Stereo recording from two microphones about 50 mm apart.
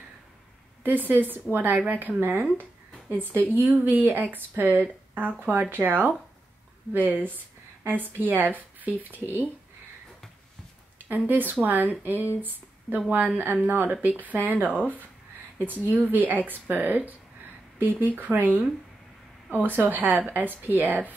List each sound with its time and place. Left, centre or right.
0.8 s speech: right
3.5 s speech: right
11.1 s speech: right